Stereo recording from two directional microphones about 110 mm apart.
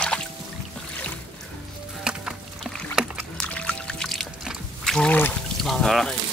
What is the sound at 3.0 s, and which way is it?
Rowboat, 5° right (ahead or behind).